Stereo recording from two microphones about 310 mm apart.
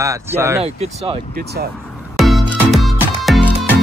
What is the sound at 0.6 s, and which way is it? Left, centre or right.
Speech, centre.